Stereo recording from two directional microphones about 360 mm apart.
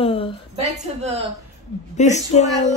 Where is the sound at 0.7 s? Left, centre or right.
Centre.